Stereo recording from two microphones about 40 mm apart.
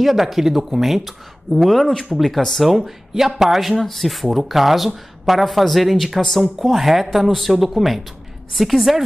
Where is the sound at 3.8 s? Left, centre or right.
Centre.